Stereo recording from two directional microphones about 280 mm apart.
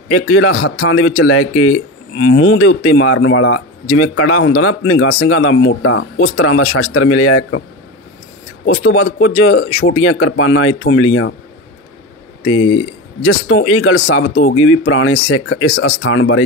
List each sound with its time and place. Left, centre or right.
0.1 s speech: left
8.6 s speech: left
13.2 s speech: left